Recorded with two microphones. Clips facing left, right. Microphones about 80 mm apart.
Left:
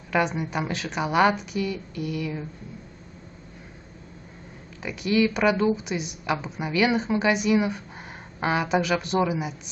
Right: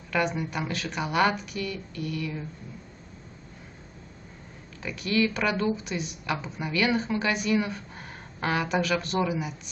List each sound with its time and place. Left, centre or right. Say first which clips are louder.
0.1 s speech: left 3 dB; left
4.8 s a woman's voice: left 3 dB; centre